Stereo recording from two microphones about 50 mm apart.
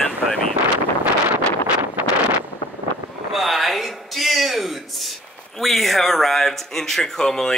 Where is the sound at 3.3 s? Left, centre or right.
Centre.